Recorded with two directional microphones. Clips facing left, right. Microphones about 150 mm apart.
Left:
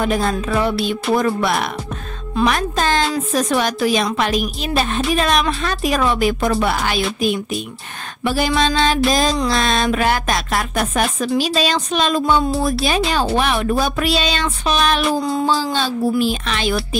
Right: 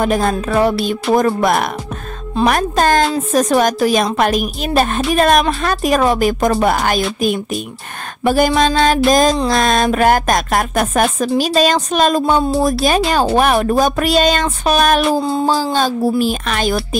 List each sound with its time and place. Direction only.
0.0 s a woman's voice: 45° right (ahead or behind)
15.1 s a sound: 30° right (ahead or behind)
15.4 s a woman's voice: 40° right (ahead or behind)